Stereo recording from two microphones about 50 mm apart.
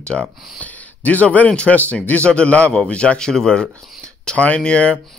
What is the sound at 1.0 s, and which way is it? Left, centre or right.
A man's voice, left.